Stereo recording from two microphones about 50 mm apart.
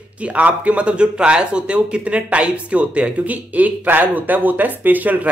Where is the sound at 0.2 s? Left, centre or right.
Right.